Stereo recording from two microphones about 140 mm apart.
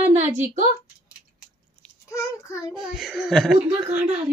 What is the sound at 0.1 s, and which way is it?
Speech, 60° right (ahead or behind).